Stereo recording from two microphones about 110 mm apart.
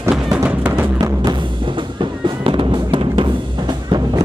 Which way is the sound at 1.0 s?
35° right (ahead or behind).